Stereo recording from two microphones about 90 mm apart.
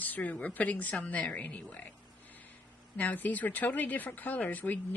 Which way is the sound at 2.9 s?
20° left (ahead or behind).